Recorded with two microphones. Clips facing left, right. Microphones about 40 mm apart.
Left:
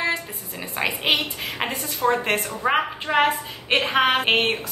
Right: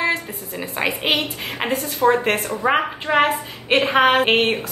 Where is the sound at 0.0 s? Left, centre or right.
Centre.